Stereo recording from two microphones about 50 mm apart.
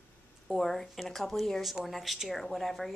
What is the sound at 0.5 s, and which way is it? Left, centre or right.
Speech, centre.